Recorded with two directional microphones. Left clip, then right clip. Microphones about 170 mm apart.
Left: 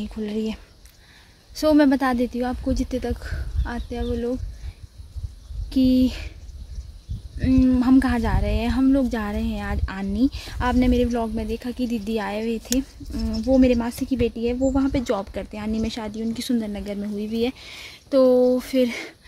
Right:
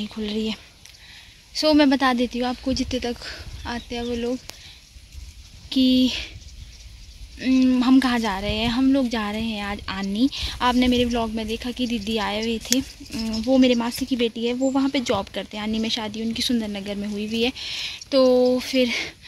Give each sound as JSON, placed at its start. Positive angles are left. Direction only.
{"t": 0.1, "sound": "speech", "side_deg": -5}
{"t": 1.5, "sound": "speech", "side_deg": 10}
{"t": 5.7, "sound": "speech", "side_deg": 5}
{"t": 7.3, "sound": "speech", "side_deg": 0}